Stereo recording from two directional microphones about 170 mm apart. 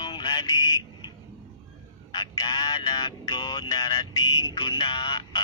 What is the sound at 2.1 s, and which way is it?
Music, 25° left (ahead or behind).